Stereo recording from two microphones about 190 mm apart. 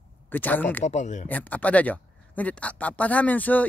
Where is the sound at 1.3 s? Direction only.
10° left (ahead or behind).